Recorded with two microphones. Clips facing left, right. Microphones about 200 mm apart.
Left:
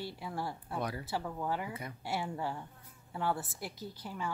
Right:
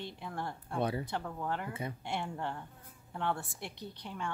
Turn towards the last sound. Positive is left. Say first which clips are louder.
# left 1 dB
turn(degrees=5)  # may be behind; listen again after turning